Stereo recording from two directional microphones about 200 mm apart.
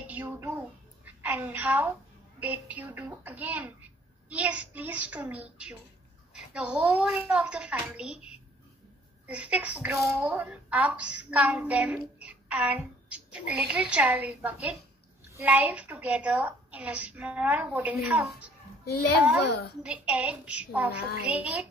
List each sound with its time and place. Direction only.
0.0 s a sound: 10° right (ahead or behind)
2.4 s a woman's voice: 10° right (ahead or behind)
19.4 s a woman's voice: 55° left (ahead or behind)
19.8 s speech: 5° right (ahead or behind)